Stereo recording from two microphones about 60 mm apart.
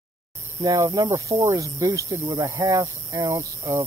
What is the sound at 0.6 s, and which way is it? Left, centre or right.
Speech, right.